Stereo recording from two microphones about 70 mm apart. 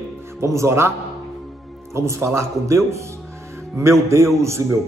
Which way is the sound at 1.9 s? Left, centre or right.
Right.